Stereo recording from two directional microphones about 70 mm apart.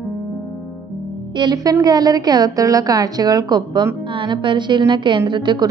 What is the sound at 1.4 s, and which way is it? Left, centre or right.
Speech, right.